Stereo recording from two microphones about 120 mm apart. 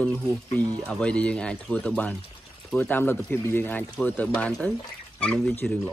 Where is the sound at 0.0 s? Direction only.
10° left (ahead or behind).